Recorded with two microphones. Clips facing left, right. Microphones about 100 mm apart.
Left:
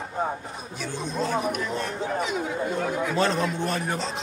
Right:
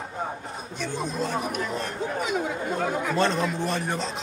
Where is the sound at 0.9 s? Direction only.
Centre (ahead or behind).